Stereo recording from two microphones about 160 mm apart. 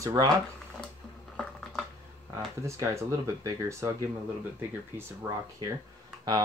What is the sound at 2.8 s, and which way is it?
Speech, 20° right (ahead or behind).